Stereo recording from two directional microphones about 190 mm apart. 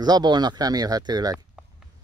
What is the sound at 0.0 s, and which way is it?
Speech, 20° right (ahead or behind).